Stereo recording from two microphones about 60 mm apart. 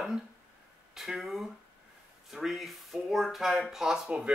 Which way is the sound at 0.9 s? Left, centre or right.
Centre.